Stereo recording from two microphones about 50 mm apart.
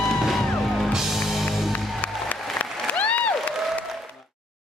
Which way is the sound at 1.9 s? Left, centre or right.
Left.